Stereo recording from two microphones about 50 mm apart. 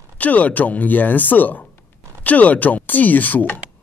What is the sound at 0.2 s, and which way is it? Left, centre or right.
Speech, left.